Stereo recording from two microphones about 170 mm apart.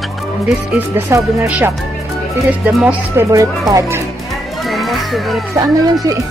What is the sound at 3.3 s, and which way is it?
Speech, 20° right (ahead or behind).